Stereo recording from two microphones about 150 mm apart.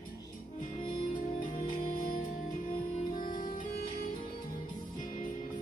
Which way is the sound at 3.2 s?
70° left (ahead or behind).